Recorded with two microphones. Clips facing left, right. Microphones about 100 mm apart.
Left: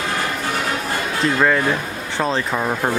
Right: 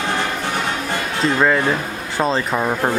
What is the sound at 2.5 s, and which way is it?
Speech, 5° right (ahead or behind).